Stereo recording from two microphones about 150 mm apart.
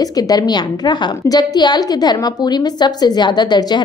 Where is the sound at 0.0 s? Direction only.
25° left (ahead or behind).